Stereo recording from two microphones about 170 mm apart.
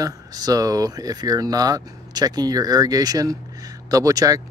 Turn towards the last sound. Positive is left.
turn(degrees=-20)  # may be behind; listen again after turning